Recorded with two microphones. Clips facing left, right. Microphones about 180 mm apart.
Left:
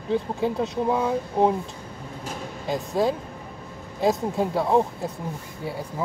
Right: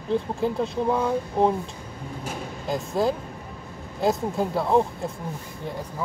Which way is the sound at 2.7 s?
Centre (ahead or behind).